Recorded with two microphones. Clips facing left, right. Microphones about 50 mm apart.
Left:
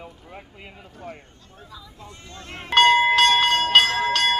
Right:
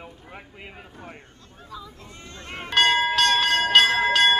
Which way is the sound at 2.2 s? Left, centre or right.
Right.